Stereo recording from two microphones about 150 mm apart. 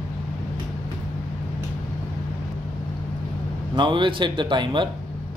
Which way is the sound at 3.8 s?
35° right (ahead or behind).